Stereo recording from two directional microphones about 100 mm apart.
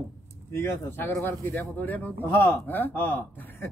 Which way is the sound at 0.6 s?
25° left (ahead or behind).